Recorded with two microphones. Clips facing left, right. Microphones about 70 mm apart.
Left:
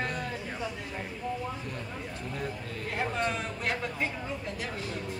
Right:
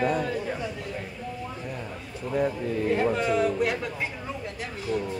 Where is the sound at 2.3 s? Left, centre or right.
Centre.